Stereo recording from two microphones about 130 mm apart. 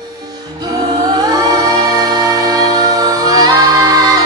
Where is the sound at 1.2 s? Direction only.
30° right (ahead or behind).